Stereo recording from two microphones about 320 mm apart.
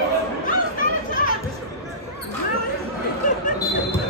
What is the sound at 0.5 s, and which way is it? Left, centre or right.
Chatter, left.